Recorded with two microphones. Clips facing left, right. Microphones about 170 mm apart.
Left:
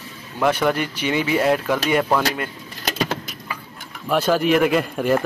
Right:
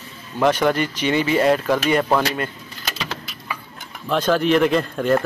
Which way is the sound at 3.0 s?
50° left (ahead or behind).